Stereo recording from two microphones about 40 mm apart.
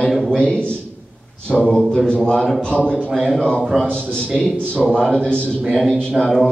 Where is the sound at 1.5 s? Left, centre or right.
Centre.